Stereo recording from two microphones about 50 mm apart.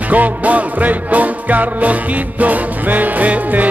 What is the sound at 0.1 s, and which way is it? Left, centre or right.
Music, right.